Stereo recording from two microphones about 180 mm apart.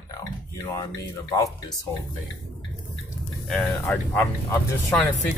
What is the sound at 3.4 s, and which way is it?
Speech, 5° left (ahead or behind).